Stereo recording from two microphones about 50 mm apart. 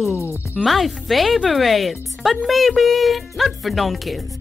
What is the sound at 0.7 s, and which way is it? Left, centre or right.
Speech, centre.